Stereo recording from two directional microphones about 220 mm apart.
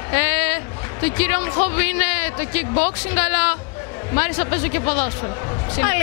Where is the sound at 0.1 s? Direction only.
10° left (ahead or behind).